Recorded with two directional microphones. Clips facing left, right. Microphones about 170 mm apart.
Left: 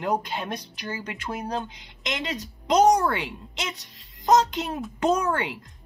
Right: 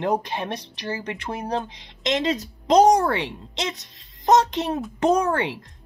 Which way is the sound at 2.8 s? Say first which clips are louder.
Right 2 dB; 30° right (ahead or behind).